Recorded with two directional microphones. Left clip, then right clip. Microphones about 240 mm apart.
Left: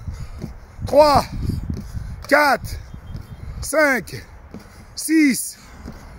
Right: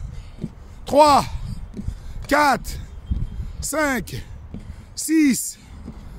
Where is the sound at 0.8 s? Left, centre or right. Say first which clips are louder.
Left 1 dB; centre.